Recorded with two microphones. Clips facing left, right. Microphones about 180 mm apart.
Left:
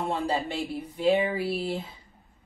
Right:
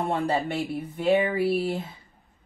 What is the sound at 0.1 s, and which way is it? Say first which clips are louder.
Speech: right 3 dB; 55° right (ahead or behind).